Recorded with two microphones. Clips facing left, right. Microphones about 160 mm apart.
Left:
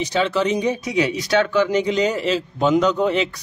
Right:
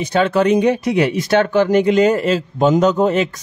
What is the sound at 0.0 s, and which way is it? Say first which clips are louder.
Speech: right 5 dB; 55° right (ahead or behind).